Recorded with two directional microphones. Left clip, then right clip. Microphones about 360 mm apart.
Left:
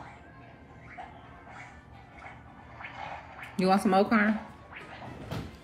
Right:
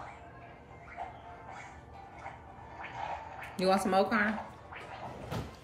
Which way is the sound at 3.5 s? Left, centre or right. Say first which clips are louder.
Left 3 dB; centre.